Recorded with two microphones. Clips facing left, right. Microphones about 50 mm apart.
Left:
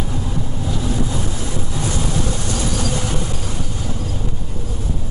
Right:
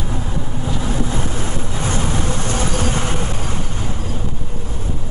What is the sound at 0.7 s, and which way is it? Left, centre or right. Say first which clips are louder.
Vehicle: right 1 dB; right.